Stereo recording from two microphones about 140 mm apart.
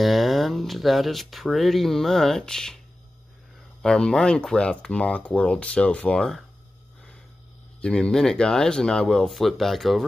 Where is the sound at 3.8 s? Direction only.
5° left (ahead or behind).